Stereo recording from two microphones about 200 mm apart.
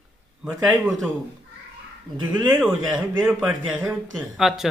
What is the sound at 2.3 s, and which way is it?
A man's voice, 10° right (ahead or behind).